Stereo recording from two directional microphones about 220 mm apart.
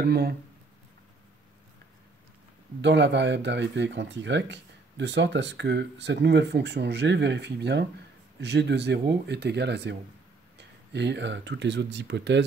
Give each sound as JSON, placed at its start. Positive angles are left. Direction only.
{"t": 0.0, "sound": "speech", "side_deg": -45}
{"t": 2.8, "sound": "speech", "side_deg": -50}